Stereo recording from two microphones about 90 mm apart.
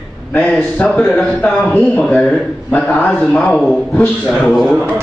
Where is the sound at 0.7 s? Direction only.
15° left (ahead or behind).